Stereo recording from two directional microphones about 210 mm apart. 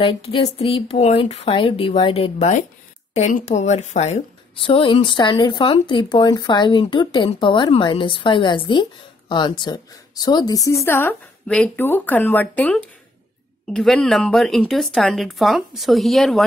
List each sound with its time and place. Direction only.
0.0 s a woman's voice: 25° left (ahead or behind); by 16.4 s centre (ahead or behind)